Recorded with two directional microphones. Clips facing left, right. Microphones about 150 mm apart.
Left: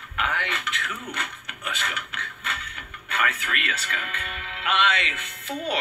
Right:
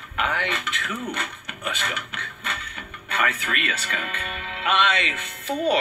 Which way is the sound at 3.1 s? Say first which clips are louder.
Right 2 dB; 35° right (ahead or behind).